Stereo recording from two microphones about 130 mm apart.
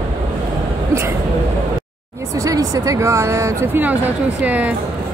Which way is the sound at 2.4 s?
25° right (ahead or behind).